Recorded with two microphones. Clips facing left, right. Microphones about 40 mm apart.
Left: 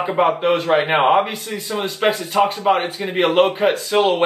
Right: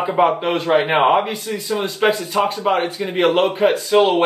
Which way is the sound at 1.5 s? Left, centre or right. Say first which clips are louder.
Right 1 dB; centre.